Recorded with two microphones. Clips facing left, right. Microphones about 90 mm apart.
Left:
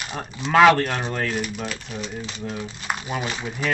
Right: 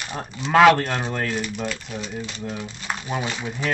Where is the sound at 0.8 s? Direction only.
10° left (ahead or behind).